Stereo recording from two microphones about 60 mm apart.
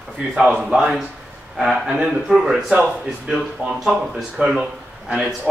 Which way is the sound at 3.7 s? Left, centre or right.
Centre.